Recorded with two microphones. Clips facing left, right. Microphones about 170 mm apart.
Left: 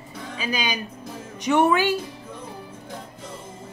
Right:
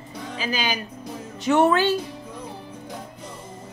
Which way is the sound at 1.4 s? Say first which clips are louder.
Right 1 dB; 15° left (ahead or behind).